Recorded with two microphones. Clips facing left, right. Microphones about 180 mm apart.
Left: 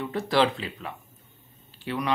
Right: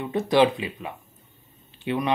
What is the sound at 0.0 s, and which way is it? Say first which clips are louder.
Speech: right 4 dB; 20° right (ahead or behind).